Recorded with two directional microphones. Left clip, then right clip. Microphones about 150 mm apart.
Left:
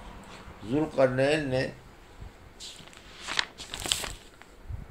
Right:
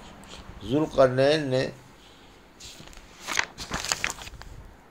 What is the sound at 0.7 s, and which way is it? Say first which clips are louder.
Speech: right 4 dB; 30° right (ahead or behind).